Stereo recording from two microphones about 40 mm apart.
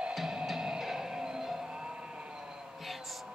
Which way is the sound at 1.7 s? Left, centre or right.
Right.